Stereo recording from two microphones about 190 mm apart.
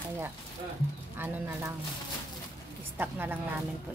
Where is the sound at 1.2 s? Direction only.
10° right (ahead or behind).